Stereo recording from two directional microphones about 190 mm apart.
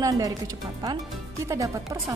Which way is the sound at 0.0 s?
20° right (ahead or behind).